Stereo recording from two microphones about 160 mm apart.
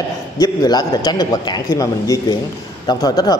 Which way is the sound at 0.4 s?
25° left (ahead or behind).